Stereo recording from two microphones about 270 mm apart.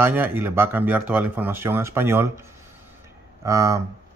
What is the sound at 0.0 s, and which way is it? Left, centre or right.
Speech, centre.